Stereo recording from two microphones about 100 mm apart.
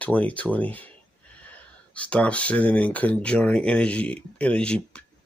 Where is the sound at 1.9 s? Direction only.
15° left (ahead or behind).